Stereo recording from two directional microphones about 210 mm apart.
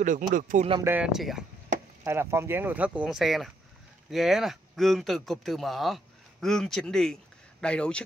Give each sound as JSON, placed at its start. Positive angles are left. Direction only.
{"t": 0.0, "sound": "speech", "side_deg": -40}
{"t": 0.8, "sound": "speech", "side_deg": -5}